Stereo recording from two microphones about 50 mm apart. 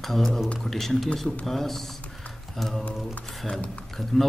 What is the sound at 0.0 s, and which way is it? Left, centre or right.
A man's voice, centre.